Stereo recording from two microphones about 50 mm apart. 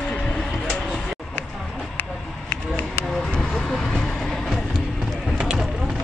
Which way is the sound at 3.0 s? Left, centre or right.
Centre.